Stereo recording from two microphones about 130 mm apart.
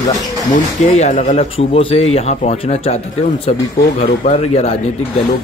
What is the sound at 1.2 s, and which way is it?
A man's voice, 50° left (ahead or behind).